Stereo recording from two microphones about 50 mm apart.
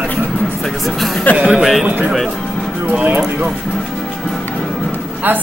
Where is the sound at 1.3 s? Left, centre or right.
Right.